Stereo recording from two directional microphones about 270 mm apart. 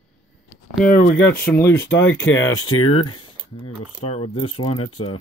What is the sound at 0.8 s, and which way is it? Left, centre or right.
Speech, left.